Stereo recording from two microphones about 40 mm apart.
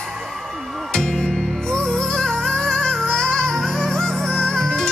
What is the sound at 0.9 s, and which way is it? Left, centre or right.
Music, centre.